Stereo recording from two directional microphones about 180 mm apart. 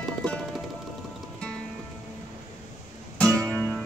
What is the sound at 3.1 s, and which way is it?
Music, 5° left (ahead or behind).